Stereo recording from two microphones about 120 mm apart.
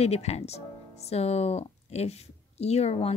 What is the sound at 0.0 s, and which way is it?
Speech, 65° left (ahead or behind).